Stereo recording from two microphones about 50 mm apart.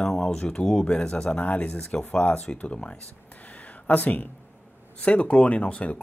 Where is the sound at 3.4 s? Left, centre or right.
Left.